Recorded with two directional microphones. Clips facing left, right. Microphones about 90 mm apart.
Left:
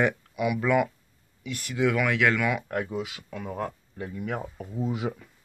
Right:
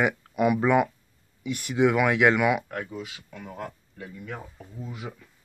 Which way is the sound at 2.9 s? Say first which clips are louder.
Left 5 dB; 90° left.